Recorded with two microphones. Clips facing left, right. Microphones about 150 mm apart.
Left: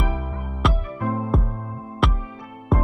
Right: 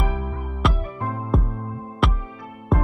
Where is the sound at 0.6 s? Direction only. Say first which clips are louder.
Left 1 dB; centre (ahead or behind).